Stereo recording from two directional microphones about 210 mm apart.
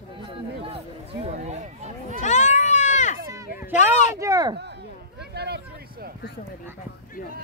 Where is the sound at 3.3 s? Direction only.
10° right (ahead or behind).